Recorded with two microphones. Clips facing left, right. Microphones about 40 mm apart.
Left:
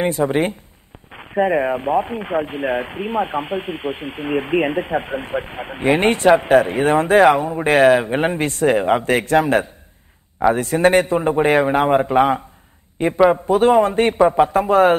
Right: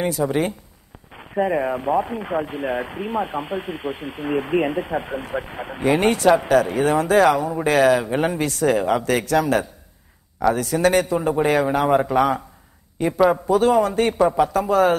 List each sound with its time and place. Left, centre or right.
0.0 s a woman's voice: left